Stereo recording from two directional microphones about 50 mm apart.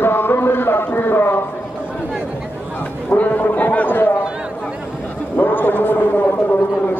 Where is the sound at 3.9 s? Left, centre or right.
Left.